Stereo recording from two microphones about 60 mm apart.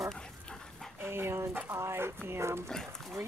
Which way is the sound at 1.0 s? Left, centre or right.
Right.